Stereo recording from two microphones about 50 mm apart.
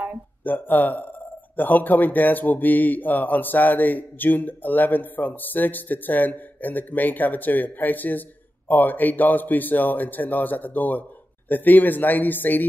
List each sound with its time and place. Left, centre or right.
0.4 s speech: left